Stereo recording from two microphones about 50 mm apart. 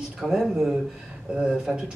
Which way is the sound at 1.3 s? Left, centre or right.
Centre.